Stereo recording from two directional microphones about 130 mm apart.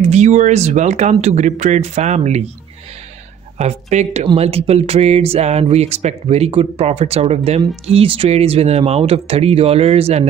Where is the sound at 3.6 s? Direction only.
60° right (ahead or behind).